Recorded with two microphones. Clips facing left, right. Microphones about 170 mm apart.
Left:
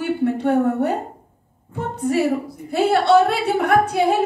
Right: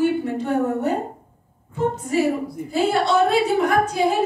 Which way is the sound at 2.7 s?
65° left (ahead or behind).